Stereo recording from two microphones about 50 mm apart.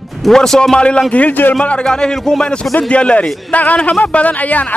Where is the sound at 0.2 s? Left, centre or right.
Centre.